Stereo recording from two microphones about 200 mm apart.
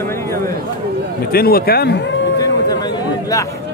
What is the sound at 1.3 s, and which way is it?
Speech, 50° left (ahead or behind).